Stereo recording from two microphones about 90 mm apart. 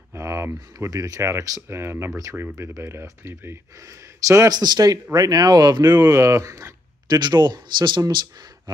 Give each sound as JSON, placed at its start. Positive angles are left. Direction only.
{"t": 0.1, "sound": "speech", "side_deg": -30}
{"t": 5.9, "sound": "speech", "side_deg": -30}
{"t": 7.2, "sound": "speech", "side_deg": -55}